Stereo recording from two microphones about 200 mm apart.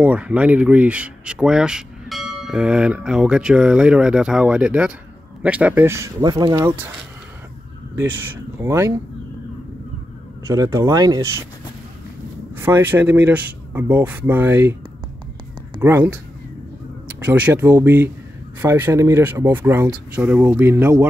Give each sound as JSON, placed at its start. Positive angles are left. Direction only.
{"t": 0.0, "sound": "speech", "side_deg": -5}
{"t": 8.6, "sound": "speech", "side_deg": -15}
{"t": 10.4, "sound": "speech", "side_deg": -15}
{"t": 12.5, "sound": "speech", "side_deg": -10}
{"t": 15.8, "sound": "speech", "side_deg": -10}
{"t": 17.2, "sound": "speech", "side_deg": -10}